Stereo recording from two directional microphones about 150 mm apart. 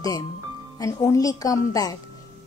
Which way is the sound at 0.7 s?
20° left (ahead or behind).